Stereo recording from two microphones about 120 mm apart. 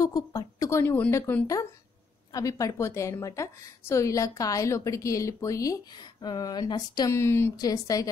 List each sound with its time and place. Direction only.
0.0 s a woman's voice: 30° left (ahead or behind)